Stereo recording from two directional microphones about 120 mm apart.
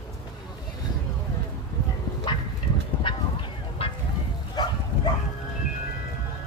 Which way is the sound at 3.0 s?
45° left (ahead or behind).